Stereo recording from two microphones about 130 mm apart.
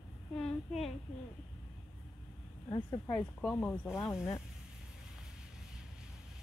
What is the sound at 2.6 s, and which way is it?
Speech, 30° left (ahead or behind).